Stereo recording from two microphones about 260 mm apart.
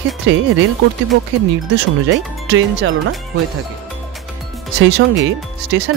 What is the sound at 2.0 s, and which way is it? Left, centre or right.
Speech, right.